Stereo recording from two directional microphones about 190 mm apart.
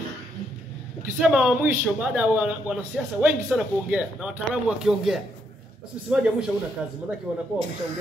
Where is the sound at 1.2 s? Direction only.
5° right (ahead or behind).